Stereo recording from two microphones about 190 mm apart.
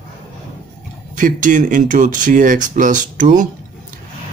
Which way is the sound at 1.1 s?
45° right (ahead or behind).